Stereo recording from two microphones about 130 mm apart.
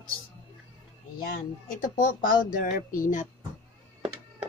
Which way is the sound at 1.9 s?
90° left.